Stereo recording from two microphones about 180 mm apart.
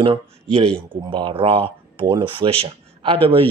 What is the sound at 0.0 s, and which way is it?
A man's voice, 30° right (ahead or behind).